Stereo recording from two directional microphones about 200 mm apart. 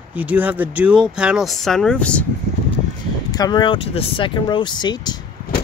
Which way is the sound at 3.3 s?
20° left (ahead or behind).